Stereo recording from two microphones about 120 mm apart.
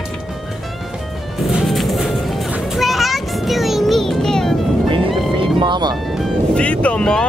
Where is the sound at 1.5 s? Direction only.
Centre (ahead or behind).